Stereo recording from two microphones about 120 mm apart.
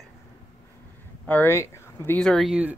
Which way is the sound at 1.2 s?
15° left (ahead or behind).